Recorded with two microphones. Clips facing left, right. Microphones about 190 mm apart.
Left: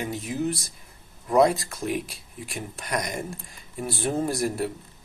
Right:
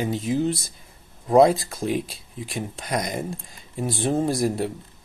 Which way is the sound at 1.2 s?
30° right (ahead or behind).